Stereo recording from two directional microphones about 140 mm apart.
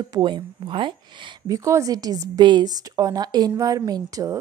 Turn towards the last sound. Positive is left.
turn(degrees=-25)  # may be behind; listen again after turning